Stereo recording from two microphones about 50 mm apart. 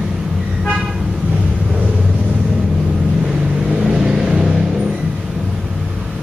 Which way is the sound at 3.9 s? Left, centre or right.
Centre.